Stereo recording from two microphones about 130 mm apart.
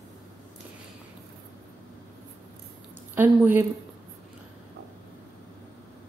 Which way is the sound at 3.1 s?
15° right (ahead or behind).